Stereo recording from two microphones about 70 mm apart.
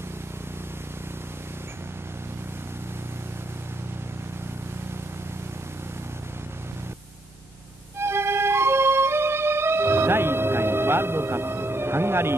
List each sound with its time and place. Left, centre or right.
8.0 s music: right